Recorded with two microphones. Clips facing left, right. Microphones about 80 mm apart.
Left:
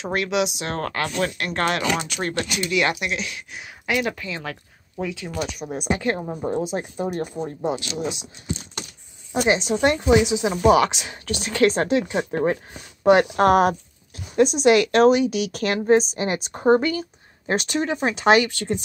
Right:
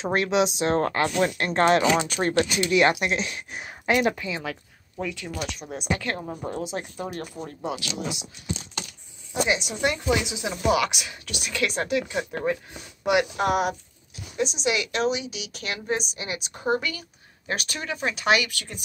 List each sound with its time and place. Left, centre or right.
0.0 s speech: right
2.4 s speech: right
4.1 s speech: centre
4.5 s a woman's voice: centre; by 6.2 s left
6.2 s a woman's voice: centre
6.5 s speech: left
9.3 s speech: left
13.0 s a woman's voice: left